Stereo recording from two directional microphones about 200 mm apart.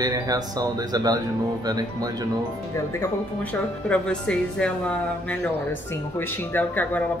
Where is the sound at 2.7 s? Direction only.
10° left (ahead or behind).